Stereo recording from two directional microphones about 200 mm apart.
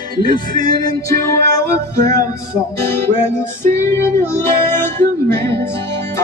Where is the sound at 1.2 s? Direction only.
15° left (ahead or behind).